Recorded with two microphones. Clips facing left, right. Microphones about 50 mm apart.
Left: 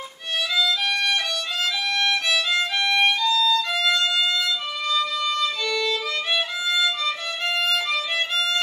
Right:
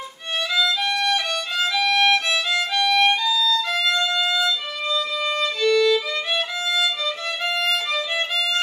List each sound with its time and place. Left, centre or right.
0.6 s violin: centre